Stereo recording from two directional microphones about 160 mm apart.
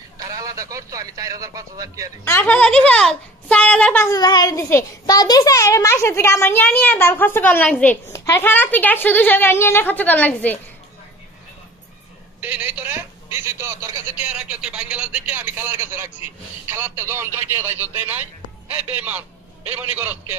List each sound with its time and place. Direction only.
0.2 s a man's voice: 20° right (ahead or behind)
2.2 s a child's voice: 15° left (ahead or behind)
12.4 s a man's voice: 10° right (ahead or behind)